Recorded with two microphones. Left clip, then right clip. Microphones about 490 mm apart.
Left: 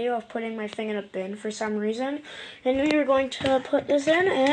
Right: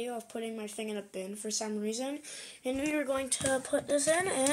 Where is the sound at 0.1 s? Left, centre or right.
Right.